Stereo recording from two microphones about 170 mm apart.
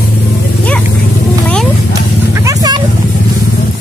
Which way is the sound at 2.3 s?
20° right (ahead or behind).